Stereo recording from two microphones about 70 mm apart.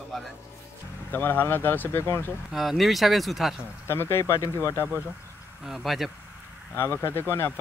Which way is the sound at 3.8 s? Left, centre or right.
Left.